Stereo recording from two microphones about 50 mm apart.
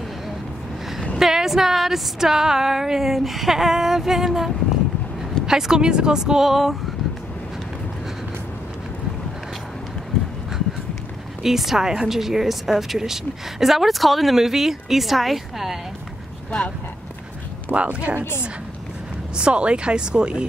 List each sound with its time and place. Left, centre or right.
1.1 s a sound: centre
11.4 s a woman's voice: centre
17.7 s speech: right
19.3 s speech: right